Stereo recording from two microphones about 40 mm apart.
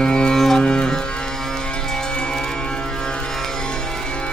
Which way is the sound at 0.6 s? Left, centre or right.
Left.